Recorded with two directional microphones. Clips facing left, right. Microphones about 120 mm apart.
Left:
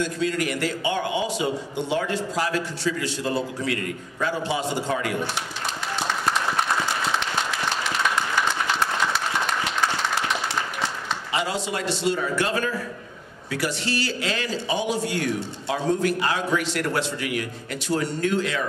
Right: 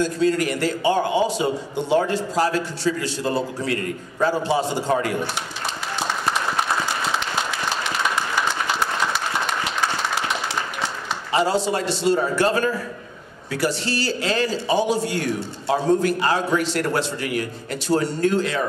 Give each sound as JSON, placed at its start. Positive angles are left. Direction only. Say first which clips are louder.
{"t": 0.0, "sound": "a man's voice", "louder": "right 5 dB", "side_deg": -35}
{"t": 7.2, "sound": "applause", "louder": "right 1 dB", "side_deg": -5}
{"t": 11.3, "sound": "a man's voice", "louder": "right 7 dB", "side_deg": -35}